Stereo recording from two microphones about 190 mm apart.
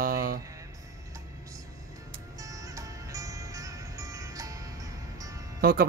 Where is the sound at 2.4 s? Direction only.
15° right (ahead or behind).